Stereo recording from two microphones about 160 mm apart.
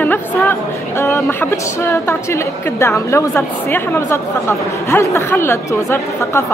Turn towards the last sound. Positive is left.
turn(degrees=15)  # may be behind; listen again after turning